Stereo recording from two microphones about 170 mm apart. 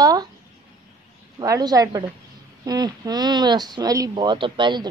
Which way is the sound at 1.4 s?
20° right (ahead or behind).